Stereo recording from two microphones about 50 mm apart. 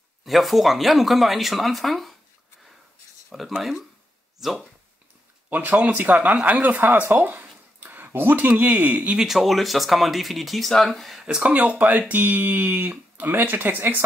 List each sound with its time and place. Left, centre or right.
0.2 s speech: centre
3.3 s speech: centre
5.5 s speech: right
9.2 s speech: centre
11.2 s speech: centre
11.5 s speech: right